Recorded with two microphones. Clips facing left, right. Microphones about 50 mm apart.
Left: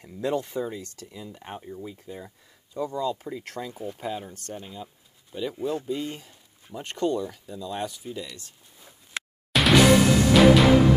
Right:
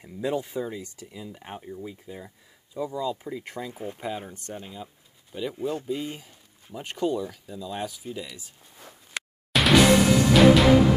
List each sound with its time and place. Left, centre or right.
0.0 s speech: centre
4.6 s speech: centre
9.5 s music: centre